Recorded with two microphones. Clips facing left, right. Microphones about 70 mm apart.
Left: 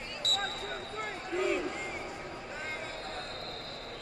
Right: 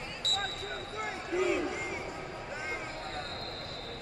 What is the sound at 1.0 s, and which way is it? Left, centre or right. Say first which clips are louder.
Basketball bounce: right 2 dB; centre.